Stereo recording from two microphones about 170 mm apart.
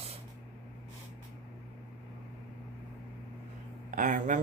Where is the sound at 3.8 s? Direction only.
50° right (ahead or behind).